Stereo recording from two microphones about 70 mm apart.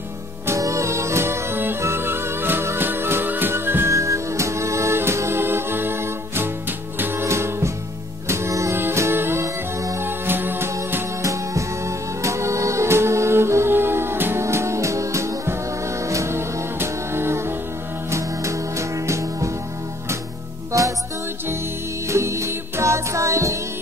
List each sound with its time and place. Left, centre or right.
0.6 s music: right
10.0 s music: right
11.2 s music: right
22.0 s music: right